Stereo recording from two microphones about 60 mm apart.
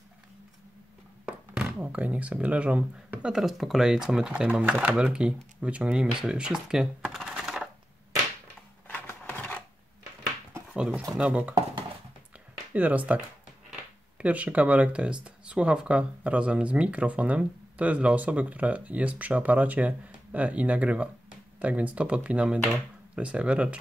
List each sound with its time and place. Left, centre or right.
1.2 s thunk: centre
1.8 s speech: right
3.3 s speech: centre
7.1 s typing: centre
9.0 s a sound: left
11.1 s speech: centre
12.7 s speech: right